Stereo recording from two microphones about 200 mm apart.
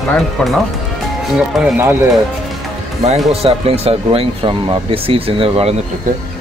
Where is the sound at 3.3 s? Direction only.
30° right (ahead or behind).